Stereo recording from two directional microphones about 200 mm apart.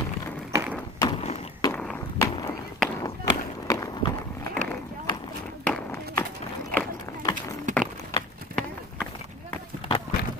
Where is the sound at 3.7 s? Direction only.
20° left (ahead or behind).